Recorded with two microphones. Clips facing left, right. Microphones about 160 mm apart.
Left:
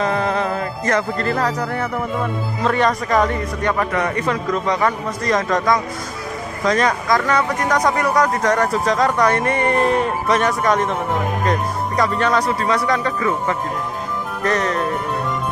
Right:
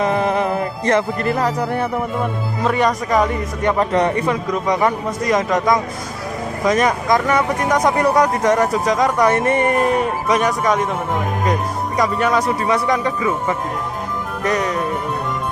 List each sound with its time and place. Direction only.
0.0 s speech: 20° right (ahead or behind)
2.0 s speech: 5° right (ahead or behind)
3.7 s a man's voice: 30° right (ahead or behind); by 11.0 s 5° right (ahead or behind)
12.0 s speech: 10° right (ahead or behind)